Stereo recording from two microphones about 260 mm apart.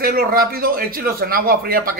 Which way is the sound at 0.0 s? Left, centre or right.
Right.